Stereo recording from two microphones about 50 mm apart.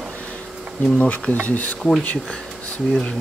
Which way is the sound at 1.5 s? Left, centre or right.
Left.